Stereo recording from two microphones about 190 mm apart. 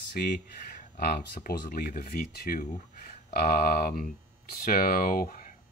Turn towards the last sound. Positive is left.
turn(degrees=45)  # may be behind; listen again after turning